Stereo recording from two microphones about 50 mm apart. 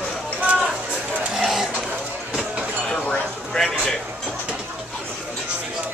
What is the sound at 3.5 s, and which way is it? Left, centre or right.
Speech, centre.